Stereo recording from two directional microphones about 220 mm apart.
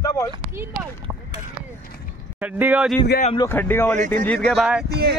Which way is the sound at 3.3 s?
10° left (ahead or behind).